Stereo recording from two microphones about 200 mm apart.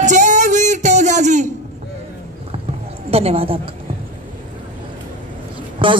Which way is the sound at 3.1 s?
30° right (ahead or behind).